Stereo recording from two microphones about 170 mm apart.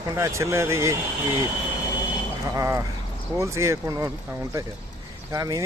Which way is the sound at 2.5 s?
20° right (ahead or behind).